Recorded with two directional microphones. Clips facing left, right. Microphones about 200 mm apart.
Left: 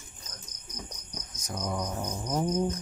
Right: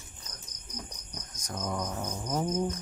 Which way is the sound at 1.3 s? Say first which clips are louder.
Left 1 dB; 10° left (ahead or behind).